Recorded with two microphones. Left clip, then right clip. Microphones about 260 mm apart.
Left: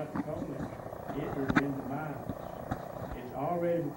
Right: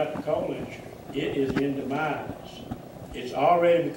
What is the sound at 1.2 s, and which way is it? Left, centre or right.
Speech, centre.